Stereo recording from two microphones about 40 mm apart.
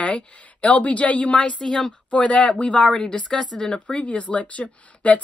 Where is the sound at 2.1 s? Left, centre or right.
Left.